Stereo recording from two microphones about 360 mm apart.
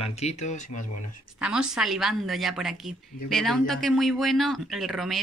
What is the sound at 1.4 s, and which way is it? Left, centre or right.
Speech, centre.